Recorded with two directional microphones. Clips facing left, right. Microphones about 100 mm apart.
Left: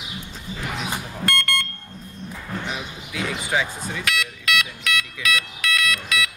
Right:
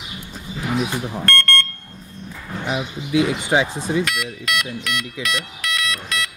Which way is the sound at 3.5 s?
30° right (ahead or behind).